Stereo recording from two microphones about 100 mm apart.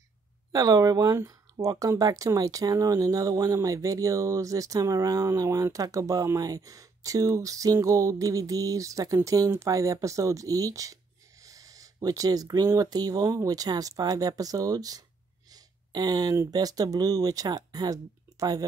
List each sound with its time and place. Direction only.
0.5 s speech: 40° right (ahead or behind)
15.5 s a sound: 40° right (ahead or behind)
16.3 s speech: 40° right (ahead or behind)